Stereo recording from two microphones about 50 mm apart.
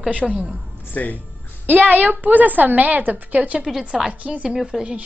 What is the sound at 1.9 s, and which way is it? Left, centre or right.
A woman's voice, right.